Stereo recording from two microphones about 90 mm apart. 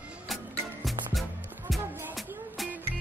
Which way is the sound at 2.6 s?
Centre (ahead or behind).